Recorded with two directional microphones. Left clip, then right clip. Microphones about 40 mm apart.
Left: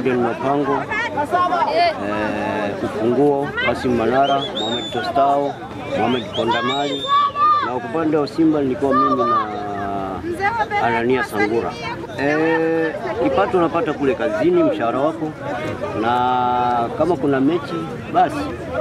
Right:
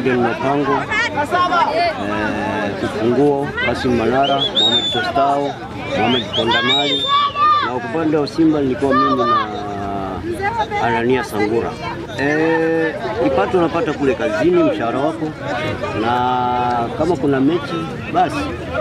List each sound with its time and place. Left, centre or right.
0.5 s speech: right
1.7 s speech: centre
3.0 s speech: right
5.9 s speech: right
8.0 s speech: centre
8.8 s speech: right
10.8 s speech: centre
11.3 s speech: left
12.4 s speech: centre
14.3 s speech: right
14.7 s speech: centre
16.1 s speech: centre